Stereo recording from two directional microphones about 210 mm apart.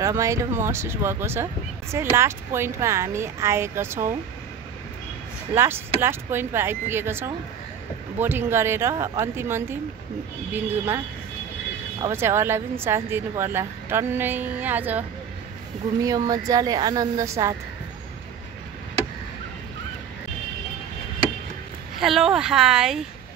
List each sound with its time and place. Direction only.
0.0 s speech: 15° right (ahead or behind)
5.5 s speech: 10° right (ahead or behind)
12.0 s speech: 10° right (ahead or behind)
22.0 s speech: centre (ahead or behind)